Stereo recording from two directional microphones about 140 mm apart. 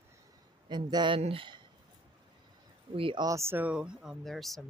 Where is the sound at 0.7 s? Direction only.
30° right (ahead or behind).